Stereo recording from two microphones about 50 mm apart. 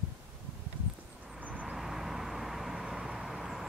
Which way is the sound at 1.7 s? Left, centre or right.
Centre.